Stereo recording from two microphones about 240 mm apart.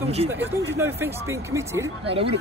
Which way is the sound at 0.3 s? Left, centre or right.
Centre.